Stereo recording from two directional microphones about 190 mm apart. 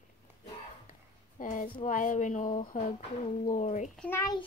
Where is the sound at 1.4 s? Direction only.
45° left (ahead or behind).